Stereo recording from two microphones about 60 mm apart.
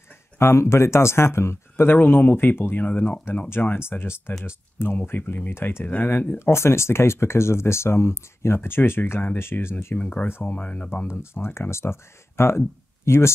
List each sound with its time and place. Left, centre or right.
0.4 s speech: left
4.9 s speech: left
5.5 s speech: left
5.9 s speech: left
9.9 s speech: left
10.9 s speech: left